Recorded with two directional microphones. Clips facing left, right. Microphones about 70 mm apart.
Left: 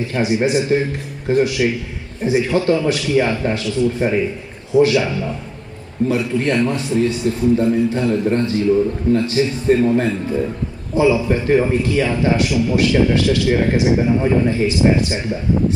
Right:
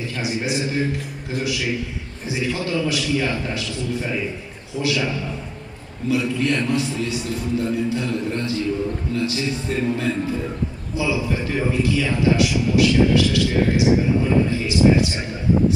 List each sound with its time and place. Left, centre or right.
0.1 s a man's voice: left
6.0 s a man's voice: left